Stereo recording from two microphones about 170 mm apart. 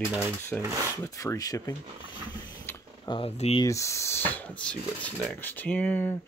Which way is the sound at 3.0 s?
30° left (ahead or behind).